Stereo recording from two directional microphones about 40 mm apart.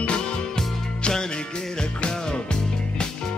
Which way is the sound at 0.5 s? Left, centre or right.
Centre.